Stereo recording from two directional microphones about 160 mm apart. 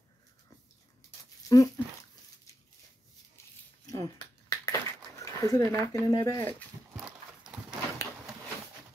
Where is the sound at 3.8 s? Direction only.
20° left (ahead or behind).